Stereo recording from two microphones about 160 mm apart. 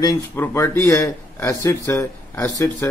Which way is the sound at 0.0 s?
20° left (ahead or behind).